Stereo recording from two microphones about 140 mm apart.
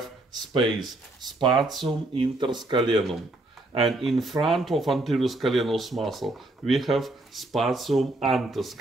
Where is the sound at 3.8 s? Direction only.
Centre (ahead or behind).